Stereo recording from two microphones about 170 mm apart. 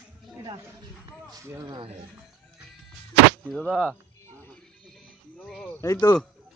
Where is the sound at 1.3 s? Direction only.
20° right (ahead or behind).